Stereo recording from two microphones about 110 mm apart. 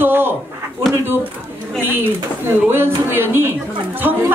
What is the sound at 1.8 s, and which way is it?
A man's voice, 20° right (ahead or behind).